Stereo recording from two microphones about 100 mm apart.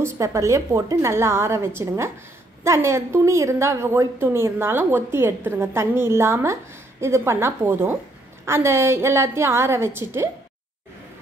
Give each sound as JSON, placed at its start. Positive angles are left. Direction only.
{"t": 0.0, "sound": "a woman's voice", "side_deg": -30}